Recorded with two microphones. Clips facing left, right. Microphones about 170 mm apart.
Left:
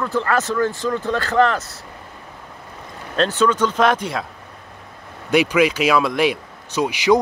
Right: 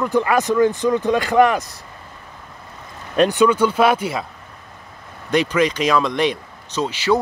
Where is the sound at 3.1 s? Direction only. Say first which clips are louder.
Right 3 dB; 15° right (ahead or behind).